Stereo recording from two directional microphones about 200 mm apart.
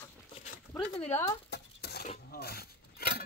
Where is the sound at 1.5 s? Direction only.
55° left (ahead or behind).